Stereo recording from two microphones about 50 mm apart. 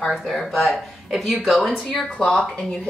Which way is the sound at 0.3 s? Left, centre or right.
Centre.